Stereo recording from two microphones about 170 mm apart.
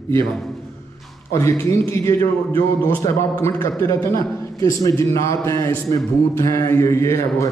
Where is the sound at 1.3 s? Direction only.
15° left (ahead or behind).